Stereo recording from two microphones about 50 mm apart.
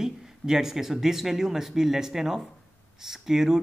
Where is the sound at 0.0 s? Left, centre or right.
Centre.